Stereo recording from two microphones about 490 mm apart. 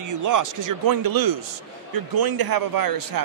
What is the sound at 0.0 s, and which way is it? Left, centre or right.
A man's voice, right.